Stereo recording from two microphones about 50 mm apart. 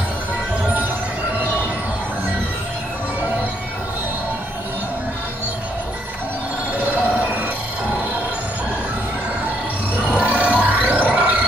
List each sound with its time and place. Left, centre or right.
6.8 s music: right
10.1 s music: right